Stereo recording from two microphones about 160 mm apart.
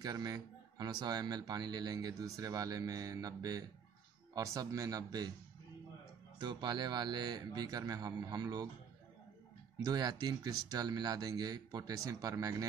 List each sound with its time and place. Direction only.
0.0 s speech: 20° right (ahead or behind)
6.3 s speech: 30° right (ahead or behind)
9.8 s speech: 25° right (ahead or behind)